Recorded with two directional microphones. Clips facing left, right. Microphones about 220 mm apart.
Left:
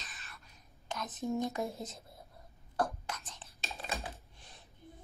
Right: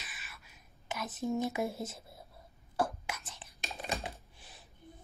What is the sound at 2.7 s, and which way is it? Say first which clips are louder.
Whispering: right 1 dB; 5° right (ahead or behind).